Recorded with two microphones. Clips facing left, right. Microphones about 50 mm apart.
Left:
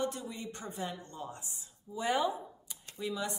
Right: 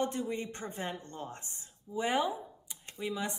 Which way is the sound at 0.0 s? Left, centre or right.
Right.